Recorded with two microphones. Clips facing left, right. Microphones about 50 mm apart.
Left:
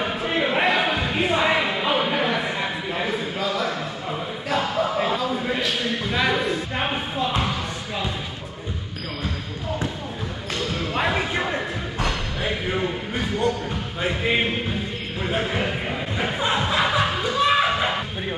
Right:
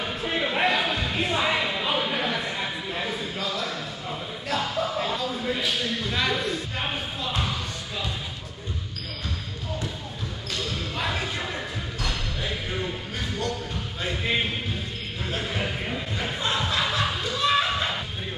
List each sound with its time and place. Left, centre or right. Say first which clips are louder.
0.0 s a sound: left 4 dB; centre
6.8 s music: left 6 dB; left
10.5 s basketball bounce: left 5 dB; left
14.0 s music: left 4 dB; left
15.2 s chuckle: left 5 dB; left